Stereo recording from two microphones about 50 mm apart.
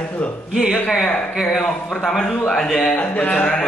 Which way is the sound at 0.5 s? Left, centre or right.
Centre.